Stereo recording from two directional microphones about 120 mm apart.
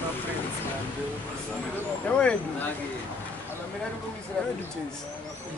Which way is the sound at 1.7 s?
15° left (ahead or behind).